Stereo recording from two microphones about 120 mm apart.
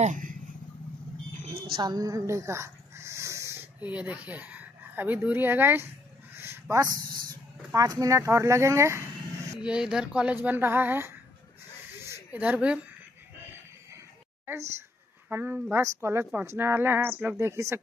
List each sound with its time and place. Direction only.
0.0 s vehicle: 90° right
1.3 s a sound: 65° right (ahead or behind)
1.8 s speech: 35° right (ahead or behind)
9.7 s speech: 5° right (ahead or behind)
12.0 s a sound: 20° right (ahead or behind)
14.4 s a woman's voice: 20° right (ahead or behind)